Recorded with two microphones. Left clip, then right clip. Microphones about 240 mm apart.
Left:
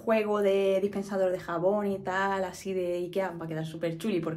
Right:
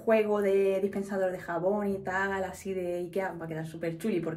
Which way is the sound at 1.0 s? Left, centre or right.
Centre.